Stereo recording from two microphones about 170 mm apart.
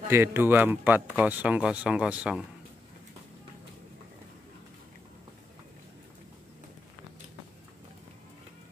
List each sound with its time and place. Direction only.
0.1 s speech: 15° right (ahead or behind)